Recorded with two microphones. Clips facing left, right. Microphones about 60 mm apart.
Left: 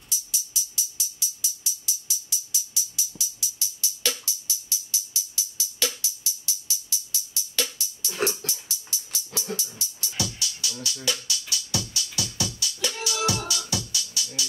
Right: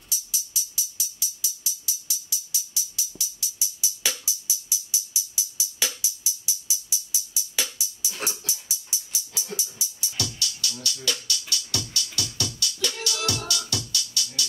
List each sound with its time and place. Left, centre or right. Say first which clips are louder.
0.1 s music: even; centre
3.5 s music: right 1 dB; centre
10.1 s music: left 1 dB; centre